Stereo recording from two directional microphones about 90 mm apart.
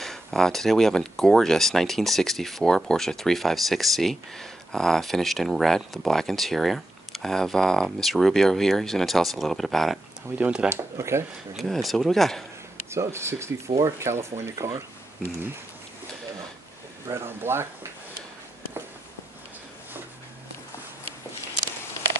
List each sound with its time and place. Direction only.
0.0 s speech: 5° left (ahead or behind)
10.3 s speech: 15° right (ahead or behind)
10.7 s speech: 30° right (ahead or behind)
11.5 s speech: centre (ahead or behind)
12.9 s speech: 30° right (ahead or behind)
17.1 s speech: 25° right (ahead or behind)